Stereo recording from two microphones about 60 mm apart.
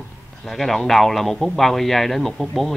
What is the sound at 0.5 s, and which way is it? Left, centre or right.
Speech, centre.